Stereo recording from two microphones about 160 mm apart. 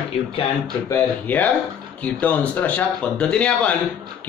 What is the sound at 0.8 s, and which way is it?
A man's voice, 10° left (ahead or behind).